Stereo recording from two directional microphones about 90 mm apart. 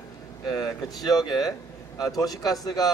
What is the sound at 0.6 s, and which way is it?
A man's voice, 45° left (ahead or behind).